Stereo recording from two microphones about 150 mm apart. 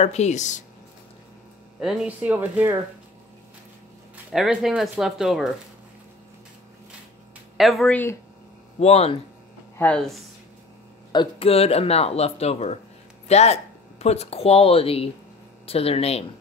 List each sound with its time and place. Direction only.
0.0 s speech: 50° left (ahead or behind)
1.8 s speech: centre (ahead or behind)
4.3 s speech: centre (ahead or behind)
7.5 s speech: centre (ahead or behind)
7.9 s speech: 15° left (ahead or behind)
8.7 s speech: 45° left (ahead or behind)
9.8 s speech: 5° left (ahead or behind)
11.1 s speech: 35° left (ahead or behind)